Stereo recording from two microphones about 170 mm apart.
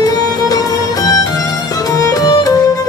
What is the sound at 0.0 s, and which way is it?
Music, 20° left (ahead or behind).